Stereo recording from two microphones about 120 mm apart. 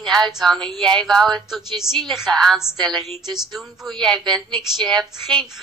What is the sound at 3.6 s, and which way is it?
A woman's voice, centre (ahead or behind).